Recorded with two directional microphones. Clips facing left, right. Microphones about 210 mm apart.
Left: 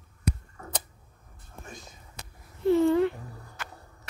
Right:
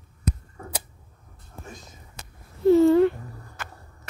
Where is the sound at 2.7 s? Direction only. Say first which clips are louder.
Right 6 dB; 40° right (ahead or behind).